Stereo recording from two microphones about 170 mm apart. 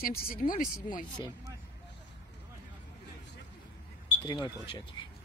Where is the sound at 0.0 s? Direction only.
60° left (ahead or behind).